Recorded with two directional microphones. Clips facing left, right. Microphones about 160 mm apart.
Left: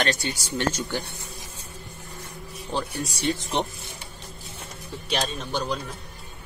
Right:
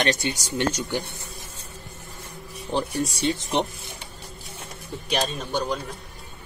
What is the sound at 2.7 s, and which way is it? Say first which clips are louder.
Speech: right 4 dB; 20° right (ahead or behind).